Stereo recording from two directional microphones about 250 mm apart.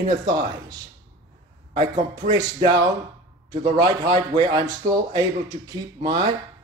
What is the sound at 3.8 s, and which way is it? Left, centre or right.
A man's voice, centre.